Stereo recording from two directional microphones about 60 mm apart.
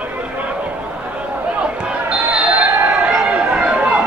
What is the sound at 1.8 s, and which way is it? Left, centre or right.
Basketball bounce, centre.